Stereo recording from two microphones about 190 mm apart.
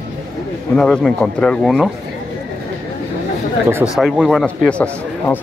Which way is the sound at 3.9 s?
Centre (ahead or behind).